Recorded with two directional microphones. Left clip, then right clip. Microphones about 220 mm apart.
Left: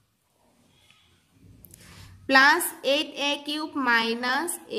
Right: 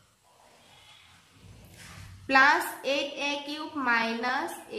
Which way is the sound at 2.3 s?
45° left (ahead or behind).